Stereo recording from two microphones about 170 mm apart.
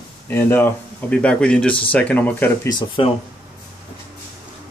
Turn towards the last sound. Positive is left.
turn(degrees=25)  # may be behind; listen again after turning